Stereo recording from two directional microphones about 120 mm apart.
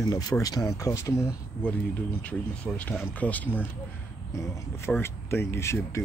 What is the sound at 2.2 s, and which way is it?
Speech, 10° left (ahead or behind).